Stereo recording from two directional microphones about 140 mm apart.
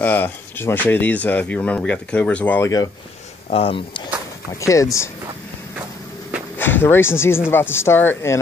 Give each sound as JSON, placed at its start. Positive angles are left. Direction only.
{"t": 0.0, "sound": "speech", "side_deg": 15}
{"t": 3.4, "sound": "speech", "side_deg": 45}
{"t": 4.5, "sound": "speech", "side_deg": 20}
{"t": 6.6, "sound": "speech", "side_deg": 15}